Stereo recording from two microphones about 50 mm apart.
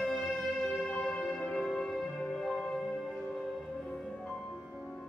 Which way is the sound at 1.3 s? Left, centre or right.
Centre.